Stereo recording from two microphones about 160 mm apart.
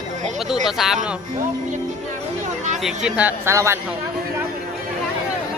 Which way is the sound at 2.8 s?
5° right (ahead or behind).